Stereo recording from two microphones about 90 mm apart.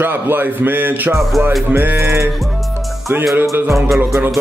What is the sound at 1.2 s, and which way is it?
Music, centre (ahead or behind).